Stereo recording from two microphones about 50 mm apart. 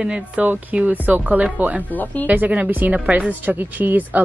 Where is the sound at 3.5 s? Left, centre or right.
Right.